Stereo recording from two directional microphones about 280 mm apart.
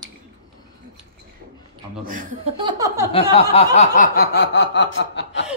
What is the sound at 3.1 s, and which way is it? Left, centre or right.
Snicker, centre.